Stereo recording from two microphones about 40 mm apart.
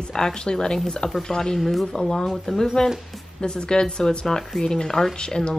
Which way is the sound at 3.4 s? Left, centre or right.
Left.